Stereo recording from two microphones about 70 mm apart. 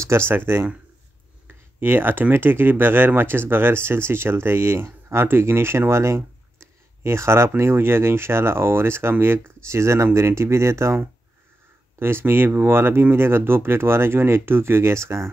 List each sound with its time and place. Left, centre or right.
0.3 s speech: right
12.0 s speech: right